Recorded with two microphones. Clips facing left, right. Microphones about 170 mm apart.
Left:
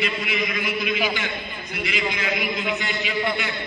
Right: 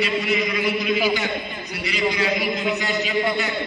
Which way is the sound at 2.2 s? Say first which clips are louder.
Right 4 dB; 40° right (ahead or behind).